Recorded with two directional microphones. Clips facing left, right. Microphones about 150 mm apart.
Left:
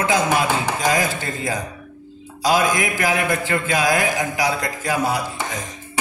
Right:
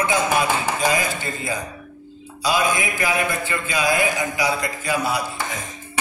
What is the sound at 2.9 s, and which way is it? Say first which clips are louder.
Speech: left 2 dB; 90° left.